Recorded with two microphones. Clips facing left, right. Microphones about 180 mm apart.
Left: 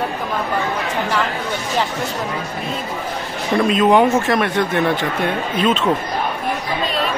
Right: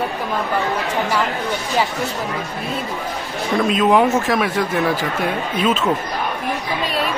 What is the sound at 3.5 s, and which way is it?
Speech, centre (ahead or behind).